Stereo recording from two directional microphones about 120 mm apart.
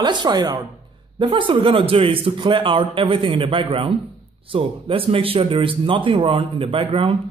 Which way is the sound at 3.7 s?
60° right (ahead or behind).